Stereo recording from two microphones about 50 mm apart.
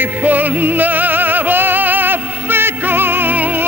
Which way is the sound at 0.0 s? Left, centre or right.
Right.